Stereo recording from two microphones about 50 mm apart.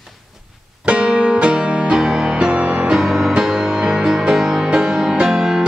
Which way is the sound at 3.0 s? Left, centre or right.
Centre.